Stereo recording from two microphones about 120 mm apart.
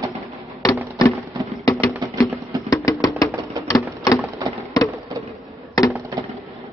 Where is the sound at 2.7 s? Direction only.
30° left (ahead or behind).